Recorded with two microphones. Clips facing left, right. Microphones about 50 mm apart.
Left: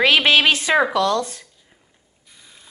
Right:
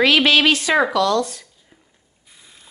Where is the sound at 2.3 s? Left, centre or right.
Centre.